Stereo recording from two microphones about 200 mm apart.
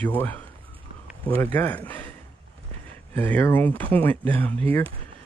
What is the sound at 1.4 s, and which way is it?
Speech, 10° left (ahead or behind).